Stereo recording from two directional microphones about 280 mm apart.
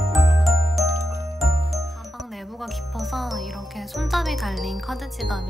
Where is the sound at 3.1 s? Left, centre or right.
Centre.